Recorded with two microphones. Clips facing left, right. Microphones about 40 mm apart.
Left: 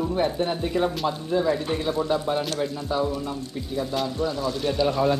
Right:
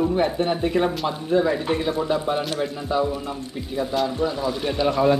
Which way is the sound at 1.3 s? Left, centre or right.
Right.